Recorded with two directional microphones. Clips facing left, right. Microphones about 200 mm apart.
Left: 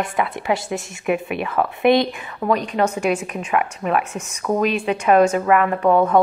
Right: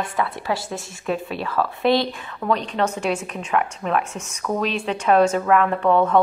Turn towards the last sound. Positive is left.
turn(degrees=10)  # may be behind; listen again after turning